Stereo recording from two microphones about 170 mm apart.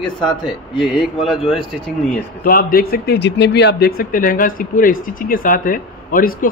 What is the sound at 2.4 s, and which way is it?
Speech, 60° left (ahead or behind).